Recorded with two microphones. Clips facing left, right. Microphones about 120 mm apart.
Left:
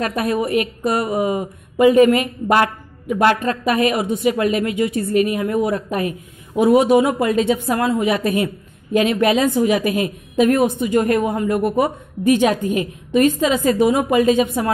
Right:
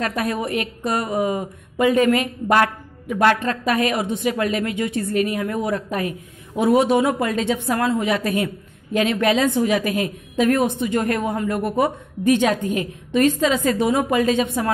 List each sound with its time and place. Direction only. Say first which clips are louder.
0.0 s a woman's voice: left 3 dB; 15° left (ahead or behind)